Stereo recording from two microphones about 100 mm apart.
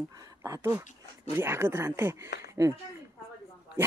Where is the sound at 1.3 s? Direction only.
25° right (ahead or behind).